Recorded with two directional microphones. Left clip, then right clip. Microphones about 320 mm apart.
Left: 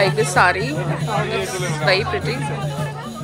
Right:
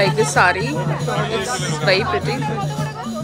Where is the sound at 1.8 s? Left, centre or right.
Centre.